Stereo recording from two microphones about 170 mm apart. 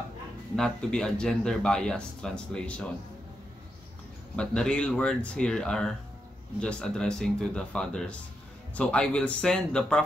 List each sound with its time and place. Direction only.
0.6 s speech: 5° left (ahead or behind)
4.4 s speech: 5° left (ahead or behind)